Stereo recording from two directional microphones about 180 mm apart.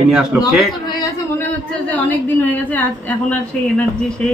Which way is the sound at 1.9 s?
10° left (ahead or behind).